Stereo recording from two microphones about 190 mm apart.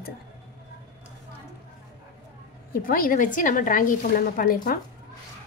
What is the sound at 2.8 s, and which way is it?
Speech, 50° left (ahead or behind).